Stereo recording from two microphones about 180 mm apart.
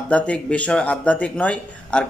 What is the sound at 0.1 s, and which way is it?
Speech, 5° left (ahead or behind).